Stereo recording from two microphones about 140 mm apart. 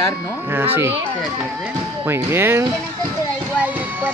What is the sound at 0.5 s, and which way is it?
Speech, 15° right (ahead or behind).